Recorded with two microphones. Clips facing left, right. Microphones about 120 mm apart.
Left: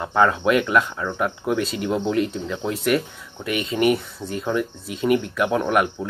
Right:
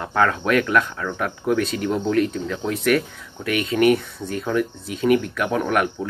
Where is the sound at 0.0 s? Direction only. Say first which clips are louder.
Left 2 dB; 10° left (ahead or behind).